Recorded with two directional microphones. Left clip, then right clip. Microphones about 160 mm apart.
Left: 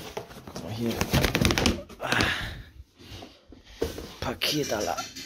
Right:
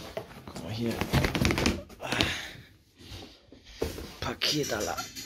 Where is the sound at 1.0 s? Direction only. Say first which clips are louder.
Left 4 dB; 55° left (ahead or behind).